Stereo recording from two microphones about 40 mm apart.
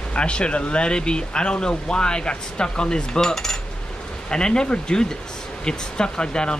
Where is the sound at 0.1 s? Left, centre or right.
Left; by 3.5 s centre.